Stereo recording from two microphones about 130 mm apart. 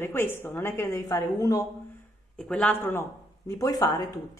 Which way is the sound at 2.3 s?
10° left (ahead or behind).